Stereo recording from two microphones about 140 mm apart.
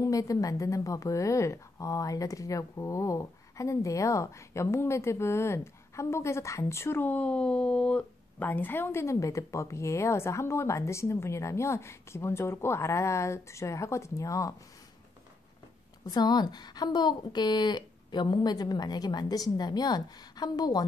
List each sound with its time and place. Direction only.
0.0 s a woman's voice: 25° left (ahead or behind)
16.1 s a woman's voice: 30° left (ahead or behind)